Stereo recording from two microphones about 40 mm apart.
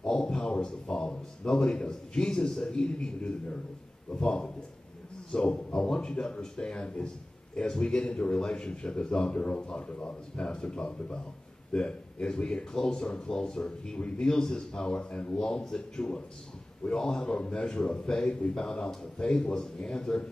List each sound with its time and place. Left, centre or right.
0.2 s a sound: centre
1.4 s speech: centre
2.8 s a man's voice: left
13.9 s a man's voice: left
14.2 s a man's voice: centre
17.2 s a man's voice: left
19.6 s speech: centre